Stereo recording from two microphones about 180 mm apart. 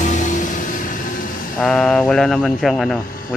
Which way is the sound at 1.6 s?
5° left (ahead or behind).